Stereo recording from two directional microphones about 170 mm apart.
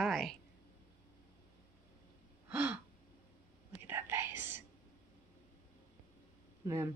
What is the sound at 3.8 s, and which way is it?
Whispering, 15° right (ahead or behind).